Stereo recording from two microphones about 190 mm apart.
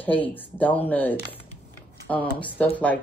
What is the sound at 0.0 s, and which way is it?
Speech, 10° left (ahead or behind).